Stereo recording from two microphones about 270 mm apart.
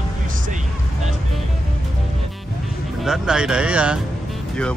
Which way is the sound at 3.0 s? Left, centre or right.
Centre.